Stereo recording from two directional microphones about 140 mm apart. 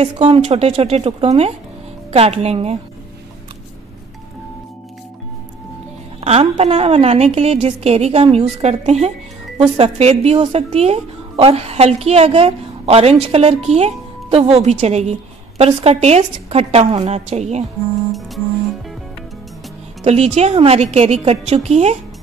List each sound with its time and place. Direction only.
0.0 s a woman's voice: 40° right (ahead or behind)
6.2 s a woman's voice: 50° right (ahead or behind)
20.0 s a woman's voice: 50° right (ahead or behind)